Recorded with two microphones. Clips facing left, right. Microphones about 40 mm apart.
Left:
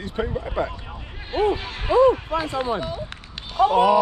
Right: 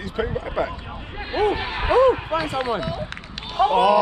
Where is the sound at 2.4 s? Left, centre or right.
Right.